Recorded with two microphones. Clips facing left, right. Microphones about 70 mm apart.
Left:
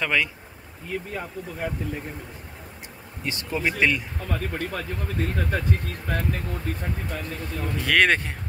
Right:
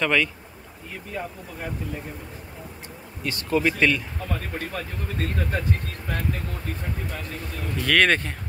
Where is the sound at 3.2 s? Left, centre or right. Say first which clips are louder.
Right 4 dB; left.